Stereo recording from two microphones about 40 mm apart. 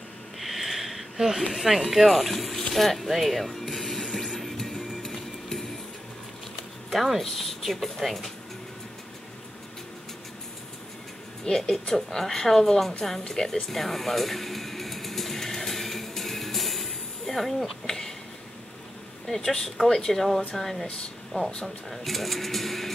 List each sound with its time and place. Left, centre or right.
0.4 s sniff: centre
1.5 s speech: centre
3.9 s music: centre
6.9 s speech: centre
11.5 s speech: left
11.9 s speech: centre
13.3 s music: centre
19.2 s speech: centre
21.3 s speech: left
21.6 s speech: centre